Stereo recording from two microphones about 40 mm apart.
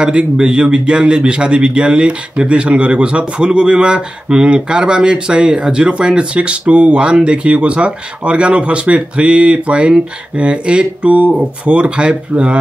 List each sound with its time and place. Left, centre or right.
0.0 s speech: right